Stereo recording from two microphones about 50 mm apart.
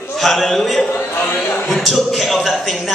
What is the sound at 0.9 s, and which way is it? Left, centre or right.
Speech, left.